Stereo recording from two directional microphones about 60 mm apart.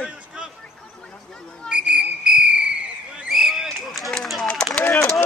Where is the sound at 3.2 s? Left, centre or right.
Centre.